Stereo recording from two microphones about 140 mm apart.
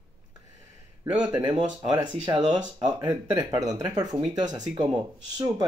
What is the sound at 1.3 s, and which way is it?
Speech, 30° right (ahead or behind).